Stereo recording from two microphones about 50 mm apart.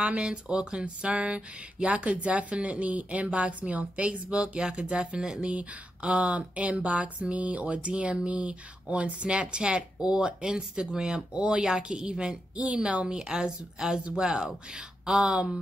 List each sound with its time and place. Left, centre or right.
0.0 s speech: right